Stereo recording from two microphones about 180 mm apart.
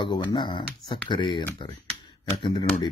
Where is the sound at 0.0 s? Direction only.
25° left (ahead or behind).